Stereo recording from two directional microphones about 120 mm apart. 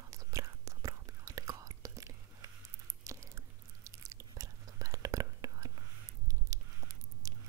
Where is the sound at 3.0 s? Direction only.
25° right (ahead or behind).